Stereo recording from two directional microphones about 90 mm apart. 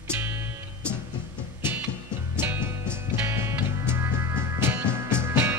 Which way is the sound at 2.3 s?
25° right (ahead or behind).